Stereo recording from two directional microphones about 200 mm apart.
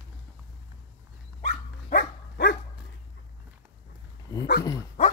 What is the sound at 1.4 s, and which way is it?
Dog, 45° left (ahead or behind).